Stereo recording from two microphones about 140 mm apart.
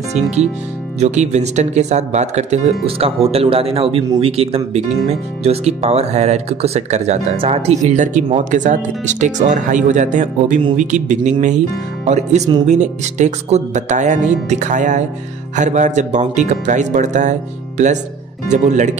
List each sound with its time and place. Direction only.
0.2 s speech: 5° right (ahead or behind)
0.9 s speech: 55° right (ahead or behind)
7.9 s speech: 65° right (ahead or behind)